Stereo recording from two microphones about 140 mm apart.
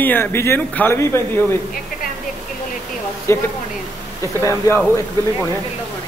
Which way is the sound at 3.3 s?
20° left (ahead or behind).